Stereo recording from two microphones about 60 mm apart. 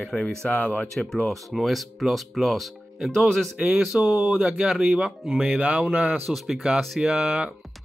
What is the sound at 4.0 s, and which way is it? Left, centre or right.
Speech, right.